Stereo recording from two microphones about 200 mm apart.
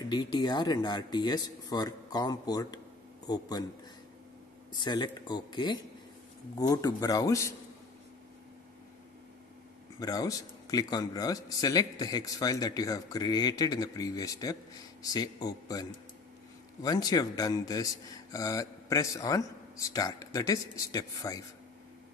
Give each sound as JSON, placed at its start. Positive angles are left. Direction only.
{"t": 0.0, "sound": "a man's voice", "side_deg": 20}
{"t": 4.7, "sound": "a man's voice", "side_deg": 20}
{"t": 9.9, "sound": "a man's voice", "side_deg": 20}